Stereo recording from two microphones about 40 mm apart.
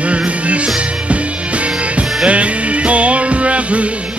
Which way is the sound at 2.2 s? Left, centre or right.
Right.